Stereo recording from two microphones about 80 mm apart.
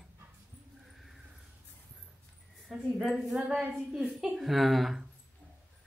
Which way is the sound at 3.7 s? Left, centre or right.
Centre.